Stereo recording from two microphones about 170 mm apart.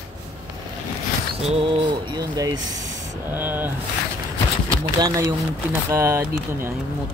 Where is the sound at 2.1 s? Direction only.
20° right (ahead or behind).